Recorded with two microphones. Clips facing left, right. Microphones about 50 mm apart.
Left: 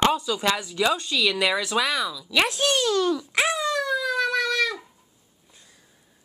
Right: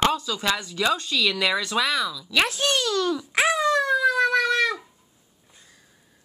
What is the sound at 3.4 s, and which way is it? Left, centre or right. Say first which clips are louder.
Speech: right 5 dB; right.